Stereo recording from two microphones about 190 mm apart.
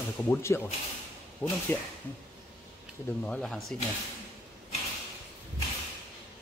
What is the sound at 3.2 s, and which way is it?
Speech, 5° left (ahead or behind).